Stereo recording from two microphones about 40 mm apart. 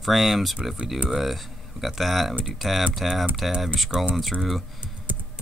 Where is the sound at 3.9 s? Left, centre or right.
Right.